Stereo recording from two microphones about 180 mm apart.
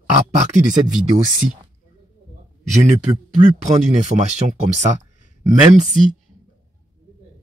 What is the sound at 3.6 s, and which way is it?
Speech, 40° right (ahead or behind).